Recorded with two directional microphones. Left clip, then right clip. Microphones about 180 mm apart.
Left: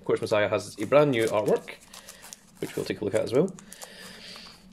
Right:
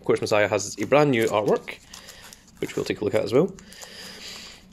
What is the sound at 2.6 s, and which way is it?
Speech, 40° right (ahead or behind).